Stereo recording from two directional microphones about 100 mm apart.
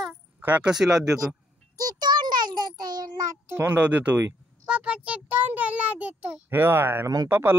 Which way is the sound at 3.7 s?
15° right (ahead or behind).